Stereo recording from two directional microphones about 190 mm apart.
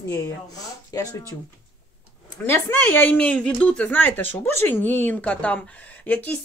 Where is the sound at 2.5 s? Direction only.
10° left (ahead or behind).